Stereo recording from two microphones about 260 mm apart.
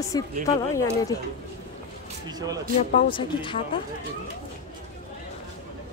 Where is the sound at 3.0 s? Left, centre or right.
Centre.